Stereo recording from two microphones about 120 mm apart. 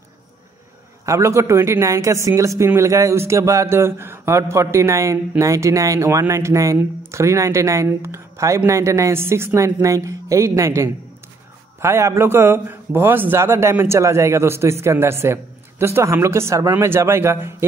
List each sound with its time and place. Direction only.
1.0 s speech: 25° right (ahead or behind)